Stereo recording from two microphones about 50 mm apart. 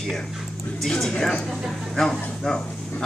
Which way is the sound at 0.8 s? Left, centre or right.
Centre.